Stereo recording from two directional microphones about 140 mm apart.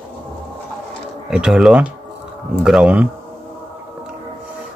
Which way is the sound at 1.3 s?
5° right (ahead or behind).